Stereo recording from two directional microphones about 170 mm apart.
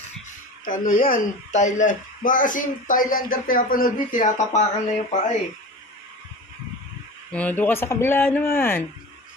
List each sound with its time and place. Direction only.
0.8 s speech: 55° left (ahead or behind)
7.3 s speech: 10° left (ahead or behind)